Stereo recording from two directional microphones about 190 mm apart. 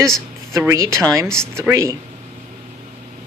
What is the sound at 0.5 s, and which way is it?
Speech, 15° right (ahead or behind).